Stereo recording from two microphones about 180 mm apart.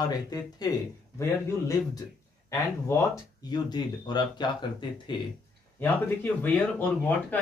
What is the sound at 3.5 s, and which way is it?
Speech, 25° left (ahead or behind).